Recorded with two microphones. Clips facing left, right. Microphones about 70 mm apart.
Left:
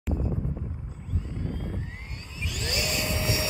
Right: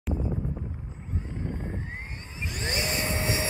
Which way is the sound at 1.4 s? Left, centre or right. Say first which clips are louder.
Even; right.